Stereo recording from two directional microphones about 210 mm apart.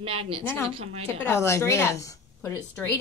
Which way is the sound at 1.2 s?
15° left (ahead or behind).